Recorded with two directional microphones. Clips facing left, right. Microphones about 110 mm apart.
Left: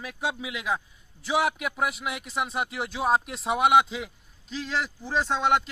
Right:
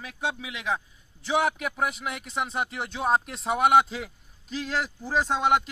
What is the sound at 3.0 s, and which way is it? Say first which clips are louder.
Speech: even; 5° left (ahead or behind).